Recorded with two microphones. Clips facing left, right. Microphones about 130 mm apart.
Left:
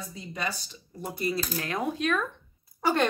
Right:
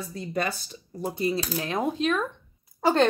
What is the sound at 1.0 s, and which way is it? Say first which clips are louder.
A woman's voice: right 4 dB; 25° right (ahead or behind).